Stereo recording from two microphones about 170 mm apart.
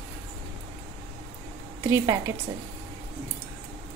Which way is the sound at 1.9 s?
15° right (ahead or behind).